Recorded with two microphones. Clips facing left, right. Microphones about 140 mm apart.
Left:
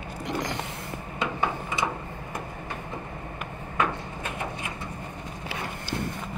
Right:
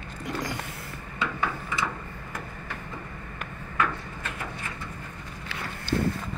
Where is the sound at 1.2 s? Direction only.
20° left (ahead or behind).